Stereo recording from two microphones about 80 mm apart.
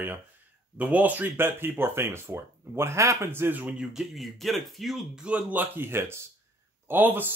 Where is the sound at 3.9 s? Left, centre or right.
Centre.